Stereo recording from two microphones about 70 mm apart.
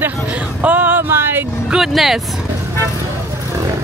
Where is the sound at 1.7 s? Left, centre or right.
Centre.